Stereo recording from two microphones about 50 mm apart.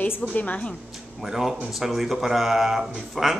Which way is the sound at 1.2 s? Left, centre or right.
Centre.